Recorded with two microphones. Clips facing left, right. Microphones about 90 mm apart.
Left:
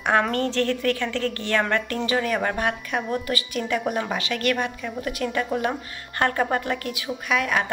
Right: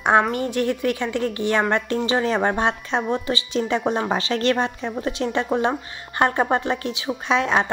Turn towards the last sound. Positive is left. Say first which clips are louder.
# right 4 dB
turn(degrees=-25)  # may be behind; listen again after turning